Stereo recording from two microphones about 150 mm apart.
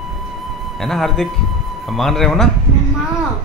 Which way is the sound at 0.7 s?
Centre (ahead or behind).